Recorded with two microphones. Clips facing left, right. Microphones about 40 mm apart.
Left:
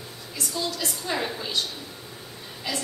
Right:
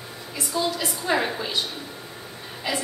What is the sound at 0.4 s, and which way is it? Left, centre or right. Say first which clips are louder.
A woman's voice: right 4 dB; centre.